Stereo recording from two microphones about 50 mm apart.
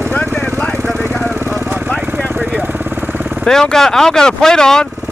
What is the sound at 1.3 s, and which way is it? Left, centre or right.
Vehicle, right.